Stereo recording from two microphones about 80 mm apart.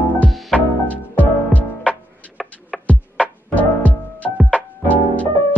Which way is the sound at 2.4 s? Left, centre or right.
Centre.